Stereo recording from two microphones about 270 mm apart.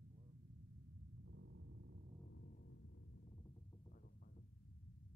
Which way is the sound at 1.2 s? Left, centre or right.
Right.